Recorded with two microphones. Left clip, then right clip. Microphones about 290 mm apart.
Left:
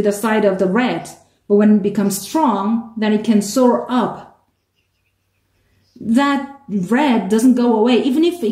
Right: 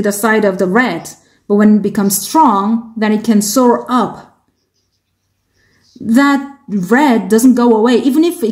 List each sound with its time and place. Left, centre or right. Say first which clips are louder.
0.0 s a woman's voice: right 3 dB; right
6.0 s a woman's voice: right 5 dB; right